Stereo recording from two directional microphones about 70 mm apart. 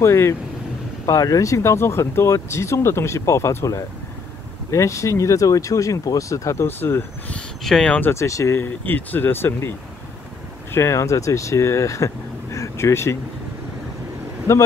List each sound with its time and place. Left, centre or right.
0.0 s speech: left
1.0 s speech: left
7.6 s speech: centre
8.1 s speech: left
8.5 s speech: left
10.7 s speech: left
12.5 s a sound: left
14.5 s speech: left